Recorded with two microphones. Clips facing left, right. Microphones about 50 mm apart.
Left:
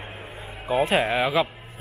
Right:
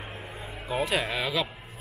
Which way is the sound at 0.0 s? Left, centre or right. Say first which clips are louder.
Left 2 dB; centre.